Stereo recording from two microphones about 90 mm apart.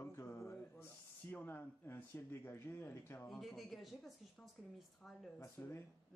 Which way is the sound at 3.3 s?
Centre (ahead or behind).